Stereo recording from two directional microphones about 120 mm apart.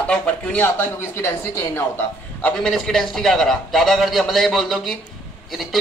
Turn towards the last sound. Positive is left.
turn(degrees=0)  # may be behind; listen again after turning